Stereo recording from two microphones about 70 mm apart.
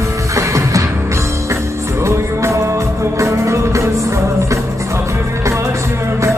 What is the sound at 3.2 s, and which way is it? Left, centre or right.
Music, right.